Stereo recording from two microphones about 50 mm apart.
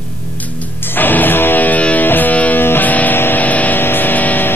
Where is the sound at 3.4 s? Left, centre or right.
Left.